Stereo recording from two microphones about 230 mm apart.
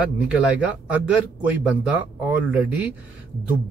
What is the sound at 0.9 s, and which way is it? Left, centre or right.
A man's voice, centre.